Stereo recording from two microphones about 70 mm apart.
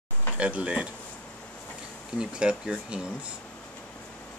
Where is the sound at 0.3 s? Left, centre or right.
Centre.